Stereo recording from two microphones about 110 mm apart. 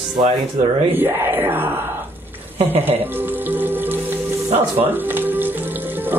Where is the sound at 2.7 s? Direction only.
20° right (ahead or behind).